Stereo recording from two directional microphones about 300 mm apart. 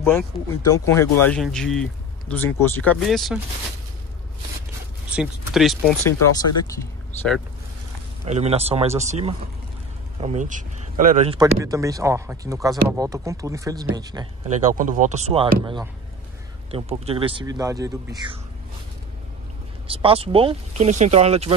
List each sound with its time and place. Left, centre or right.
0.0 s speech: centre
5.1 s speech: centre
8.3 s speech: right
11.3 s speech: centre
14.6 s speech: right
19.9 s speech: centre